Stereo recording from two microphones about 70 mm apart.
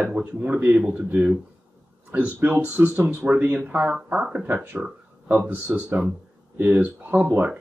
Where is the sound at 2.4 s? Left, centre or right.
Right.